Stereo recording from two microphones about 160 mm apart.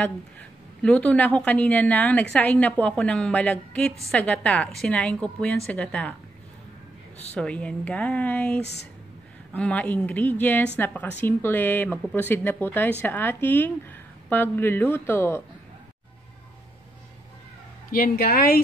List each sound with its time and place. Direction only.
0.0 s a woman's voice: 10° left (ahead or behind)
7.3 s speech: 5° left (ahead or behind)
17.9 s a woman's voice: 65° left (ahead or behind)